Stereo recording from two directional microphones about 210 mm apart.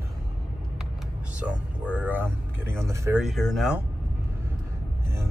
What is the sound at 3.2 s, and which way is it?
Speech, centre (ahead or behind).